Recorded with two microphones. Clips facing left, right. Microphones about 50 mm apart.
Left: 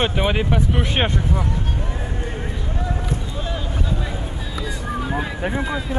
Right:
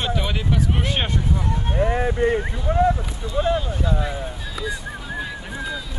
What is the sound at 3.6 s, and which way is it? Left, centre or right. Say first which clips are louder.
Speech: right 2 dB; centre.